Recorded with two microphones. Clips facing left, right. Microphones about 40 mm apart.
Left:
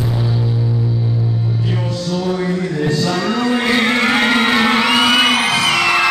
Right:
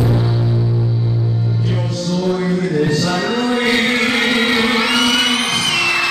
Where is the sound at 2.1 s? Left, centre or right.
Centre.